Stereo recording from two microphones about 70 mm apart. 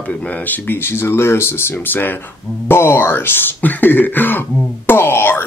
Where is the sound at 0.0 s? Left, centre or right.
Centre.